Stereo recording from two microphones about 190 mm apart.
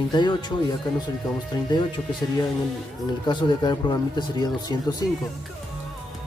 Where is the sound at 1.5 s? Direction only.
20° left (ahead or behind).